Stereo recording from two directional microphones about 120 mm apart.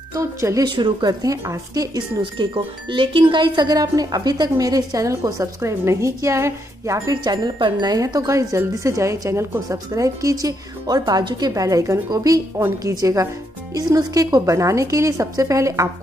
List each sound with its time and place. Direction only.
0.1 s speech: 25° right (ahead or behind)
0.7 s speech: 40° right (ahead or behind)
2.5 s speech: 45° right (ahead or behind); by 15.9 s 25° right (ahead or behind)